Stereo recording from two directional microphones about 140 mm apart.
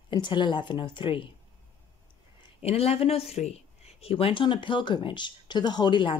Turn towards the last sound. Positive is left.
turn(degrees=35)  # may be behind; listen again after turning